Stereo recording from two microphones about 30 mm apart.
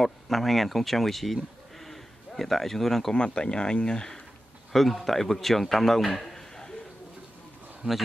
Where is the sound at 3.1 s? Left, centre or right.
Left.